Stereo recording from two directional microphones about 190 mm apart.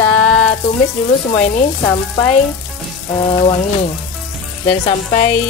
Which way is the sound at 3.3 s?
25° left (ahead or behind).